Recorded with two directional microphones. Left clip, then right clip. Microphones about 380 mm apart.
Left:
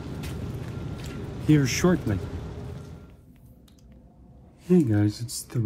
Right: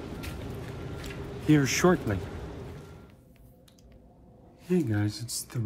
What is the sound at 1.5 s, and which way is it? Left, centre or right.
Speech, centre.